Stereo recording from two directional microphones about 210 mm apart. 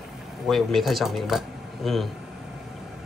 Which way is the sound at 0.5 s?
Centre (ahead or behind).